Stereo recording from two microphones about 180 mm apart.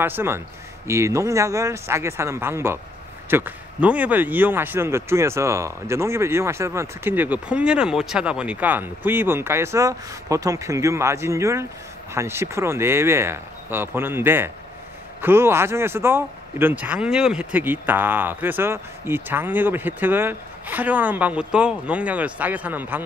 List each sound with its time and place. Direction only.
0.0 s speech: 10° right (ahead or behind)